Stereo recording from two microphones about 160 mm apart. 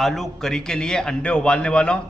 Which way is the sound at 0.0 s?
Centre (ahead or behind).